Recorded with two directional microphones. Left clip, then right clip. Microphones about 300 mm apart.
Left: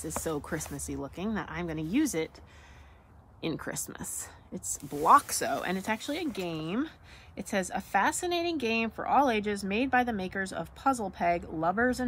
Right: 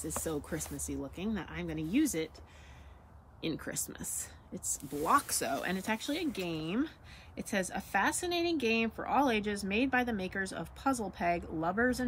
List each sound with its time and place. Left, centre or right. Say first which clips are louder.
0.0 s a woman's voice: left 3 dB; centre
3.3 s a woman's voice: left 3 dB; centre